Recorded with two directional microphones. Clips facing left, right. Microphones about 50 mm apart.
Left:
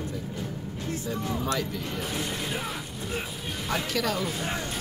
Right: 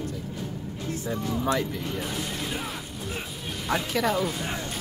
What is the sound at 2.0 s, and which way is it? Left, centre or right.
Speech, centre.